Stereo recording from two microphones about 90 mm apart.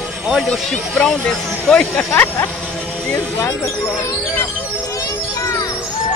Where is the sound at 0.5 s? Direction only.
10° left (ahead or behind).